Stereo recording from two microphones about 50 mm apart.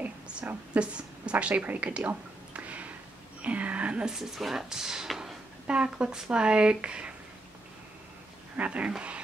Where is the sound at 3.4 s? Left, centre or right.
Right.